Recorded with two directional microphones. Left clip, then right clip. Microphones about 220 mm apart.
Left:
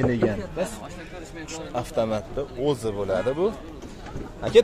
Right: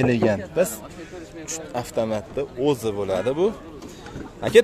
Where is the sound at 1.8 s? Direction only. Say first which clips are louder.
Even; 10° right (ahead or behind).